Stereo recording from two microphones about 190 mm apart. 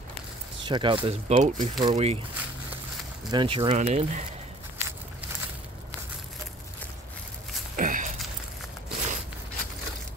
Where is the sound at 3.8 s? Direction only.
40° right (ahead or behind).